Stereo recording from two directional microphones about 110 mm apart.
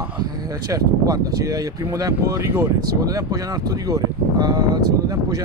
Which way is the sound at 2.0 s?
30° right (ahead or behind).